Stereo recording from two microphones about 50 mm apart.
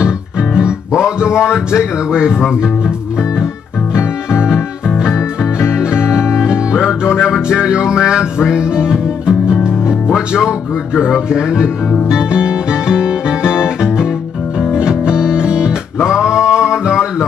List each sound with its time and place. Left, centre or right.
0.6 s music: centre
4.8 s music: centre
11.2 s speech: centre
12.1 s music: centre
16.0 s male singing: centre